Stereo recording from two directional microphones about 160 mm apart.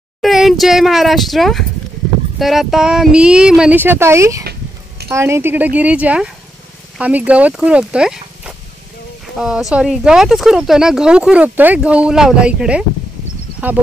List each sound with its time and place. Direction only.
0.2 s speech: centre (ahead or behind); by 4.5 s 20° right (ahead or behind)
4.5 s a sound: 85° right
5.1 s speech: 15° right (ahead or behind)